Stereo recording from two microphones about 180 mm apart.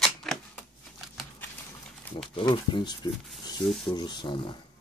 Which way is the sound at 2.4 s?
25° left (ahead or behind).